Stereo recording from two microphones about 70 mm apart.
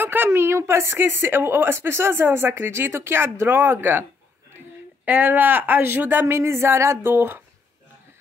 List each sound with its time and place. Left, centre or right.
0.0 s a woman's voice: right
5.0 s a woman's voice: right